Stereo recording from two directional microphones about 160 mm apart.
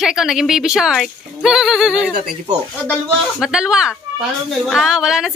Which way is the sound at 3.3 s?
5° right (ahead or behind).